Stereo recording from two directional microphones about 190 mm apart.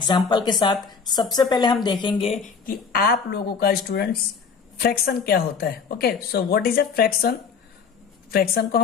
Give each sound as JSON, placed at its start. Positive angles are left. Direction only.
{"t": 0.0, "sound": "a woman's voice", "side_deg": 25}
{"t": 2.6, "sound": "a woman's voice", "side_deg": 50}